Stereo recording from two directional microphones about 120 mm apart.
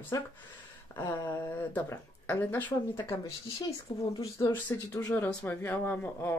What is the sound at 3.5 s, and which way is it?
Speech, 30° left (ahead or behind).